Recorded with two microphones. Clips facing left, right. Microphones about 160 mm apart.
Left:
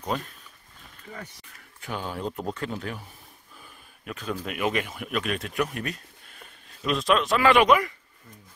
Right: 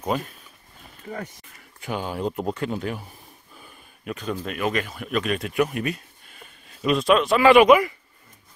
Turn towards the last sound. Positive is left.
turn(degrees=-5)  # may be behind; listen again after turning